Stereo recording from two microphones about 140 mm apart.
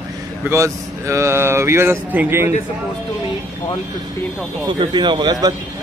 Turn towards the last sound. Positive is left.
turn(degrees=-30)  # may be behind; listen again after turning